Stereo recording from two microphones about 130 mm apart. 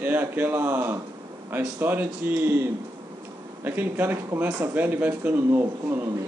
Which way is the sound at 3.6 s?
15° right (ahead or behind).